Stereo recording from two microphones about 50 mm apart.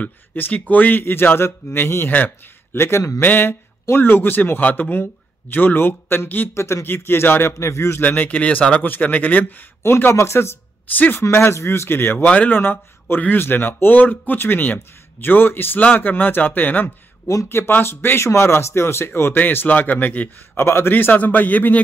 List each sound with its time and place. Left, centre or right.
0.5 s speech: left
3.2 s speech: left
6.2 s speech: left
6.5 s speech: left
7.5 s a man's voice: left
8.2 s speech: left
9.8 s speech: left
10.1 s speech: left
17.5 s speech: left
20.5 s speech: left
20.9 s speech: left